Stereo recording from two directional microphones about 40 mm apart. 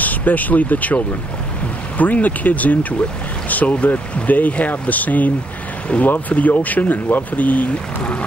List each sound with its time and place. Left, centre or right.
0.0 s speech: left
3.4 s boat: left
3.7 s speech: left
8.0 s speech: left